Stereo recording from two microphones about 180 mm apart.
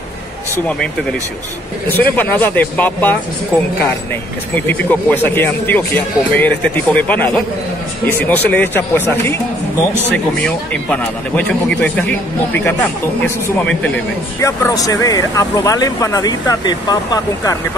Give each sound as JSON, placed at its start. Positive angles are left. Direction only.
{"t": 1.9, "sound": "speech", "side_deg": 10}
{"t": 13.6, "sound": "speech", "side_deg": 5}